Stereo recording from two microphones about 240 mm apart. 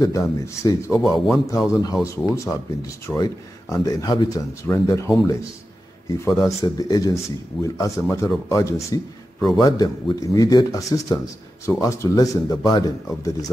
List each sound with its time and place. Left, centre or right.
0.0 s speech: centre
0.9 s speech: centre
1.5 s speech: centre